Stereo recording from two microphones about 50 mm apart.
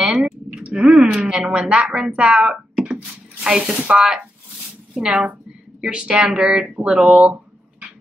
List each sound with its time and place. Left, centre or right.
0.0 s a sound: centre
1.1 s speech: centre
5.9 s speech: right